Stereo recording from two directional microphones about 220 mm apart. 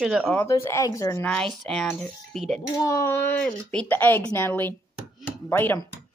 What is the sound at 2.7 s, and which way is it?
Speech, 15° left (ahead or behind).